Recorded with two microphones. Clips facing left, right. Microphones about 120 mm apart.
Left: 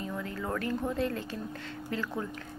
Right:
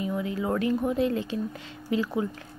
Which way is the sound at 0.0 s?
15° right (ahead or behind).